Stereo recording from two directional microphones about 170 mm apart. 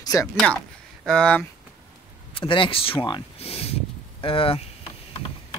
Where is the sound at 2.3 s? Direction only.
30° left (ahead or behind).